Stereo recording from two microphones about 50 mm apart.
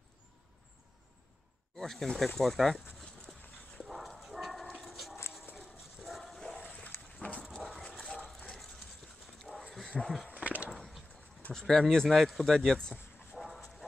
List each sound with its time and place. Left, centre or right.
1.8 s speech: centre
3.8 s dog: centre
6.7 s dog: left
9.4 s dog: centre
9.8 s a sound: centre
10.3 s a sound: right
10.7 s a sound: centre
11.5 s speech: centre
13.4 s dog: centre